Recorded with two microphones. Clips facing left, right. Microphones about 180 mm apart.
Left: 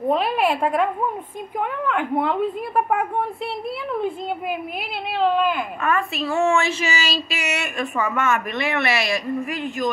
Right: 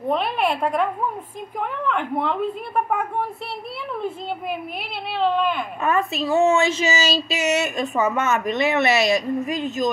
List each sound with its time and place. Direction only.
0.1 s a woman's voice: centre (ahead or behind)
1.9 s a woman's voice: 5° left (ahead or behind)
5.2 s a woman's voice: 5° left (ahead or behind)
6.2 s speech: 20° right (ahead or behind)